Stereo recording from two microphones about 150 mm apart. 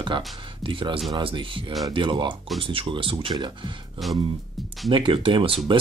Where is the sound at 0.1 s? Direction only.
30° right (ahead or behind).